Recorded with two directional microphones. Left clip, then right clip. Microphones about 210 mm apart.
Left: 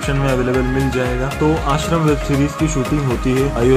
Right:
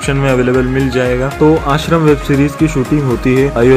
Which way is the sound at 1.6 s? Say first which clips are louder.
Right 5 dB; 15° right (ahead or behind).